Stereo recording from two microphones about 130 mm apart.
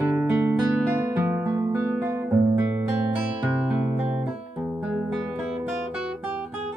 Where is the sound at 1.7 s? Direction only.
10° right (ahead or behind).